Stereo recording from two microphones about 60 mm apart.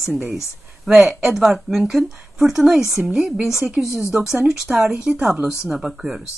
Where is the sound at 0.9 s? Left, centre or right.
Centre.